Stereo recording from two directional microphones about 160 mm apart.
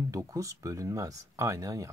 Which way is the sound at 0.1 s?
20° right (ahead or behind).